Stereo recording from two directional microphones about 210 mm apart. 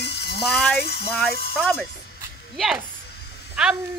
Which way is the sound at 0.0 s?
50° left (ahead or behind).